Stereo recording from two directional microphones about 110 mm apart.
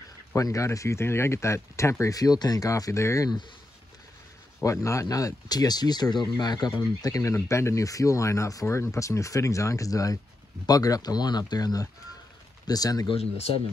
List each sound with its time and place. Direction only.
0.3 s speech: 30° left (ahead or behind)
4.6 s speech: 30° left (ahead or behind)
13.1 s speech: 65° left (ahead or behind)